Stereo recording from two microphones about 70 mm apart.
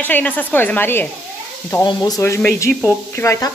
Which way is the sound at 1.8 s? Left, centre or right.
Left.